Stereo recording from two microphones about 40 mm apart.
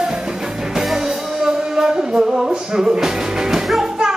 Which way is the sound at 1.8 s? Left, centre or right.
Centre.